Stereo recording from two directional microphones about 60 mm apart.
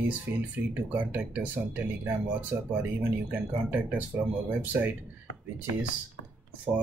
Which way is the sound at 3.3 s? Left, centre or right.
Right.